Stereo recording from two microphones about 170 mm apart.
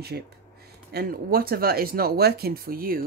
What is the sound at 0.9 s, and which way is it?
Speech, 60° right (ahead or behind).